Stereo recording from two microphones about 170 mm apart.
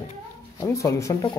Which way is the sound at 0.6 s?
15° left (ahead or behind).